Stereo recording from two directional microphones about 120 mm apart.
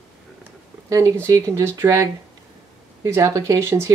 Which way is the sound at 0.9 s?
25° right (ahead or behind).